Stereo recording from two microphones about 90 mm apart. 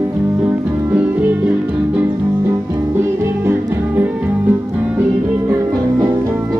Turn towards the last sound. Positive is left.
turn(degrees=-20)  # may be behind; listen again after turning